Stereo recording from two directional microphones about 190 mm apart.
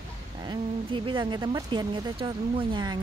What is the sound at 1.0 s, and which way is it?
Speech, 25° right (ahead or behind).